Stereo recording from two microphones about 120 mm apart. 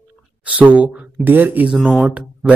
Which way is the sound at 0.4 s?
10° right (ahead or behind).